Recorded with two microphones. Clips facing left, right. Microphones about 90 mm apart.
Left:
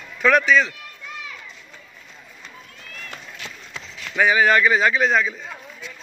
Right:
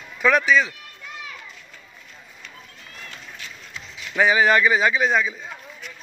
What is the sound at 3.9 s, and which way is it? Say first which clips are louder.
Speech: even; 15° right (ahead or behind).